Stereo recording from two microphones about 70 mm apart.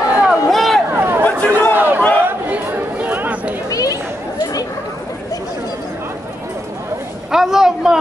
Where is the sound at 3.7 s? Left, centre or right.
Left.